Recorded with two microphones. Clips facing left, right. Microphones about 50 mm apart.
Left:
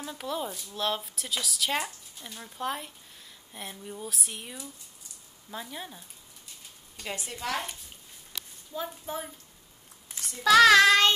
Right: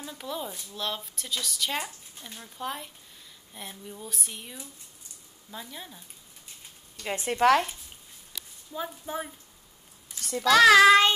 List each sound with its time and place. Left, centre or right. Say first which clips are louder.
0.0 s speech: left 2 dB; centre
7.2 s speech: right 13 dB; right
8.7 s a woman's voice: right 1 dB; centre
10.4 s speech: right 1 dB; centre